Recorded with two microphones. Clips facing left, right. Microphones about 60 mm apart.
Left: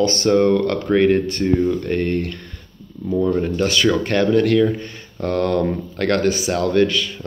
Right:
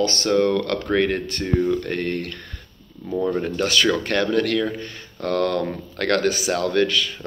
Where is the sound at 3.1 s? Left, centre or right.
Centre.